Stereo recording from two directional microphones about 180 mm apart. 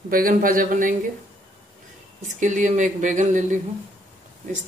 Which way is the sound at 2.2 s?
45° right (ahead or behind).